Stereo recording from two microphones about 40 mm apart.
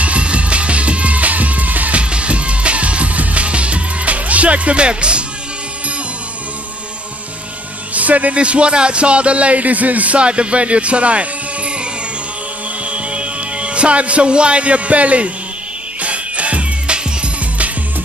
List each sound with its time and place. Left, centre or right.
0.0 s music: right
2.0 s music: right
7.9 s speech: right
12.8 s music: right